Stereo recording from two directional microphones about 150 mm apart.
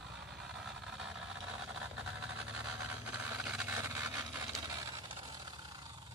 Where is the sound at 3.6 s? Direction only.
20° right (ahead or behind).